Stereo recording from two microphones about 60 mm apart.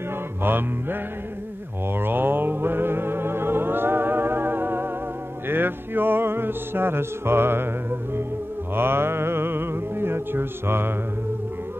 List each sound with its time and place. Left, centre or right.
0.4 s mantra: right
2.0 s music: right